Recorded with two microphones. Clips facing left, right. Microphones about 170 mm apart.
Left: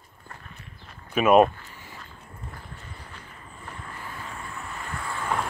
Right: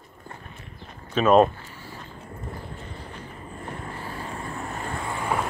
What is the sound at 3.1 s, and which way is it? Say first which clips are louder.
Vehicle: right 7 dB; 35° right (ahead or behind).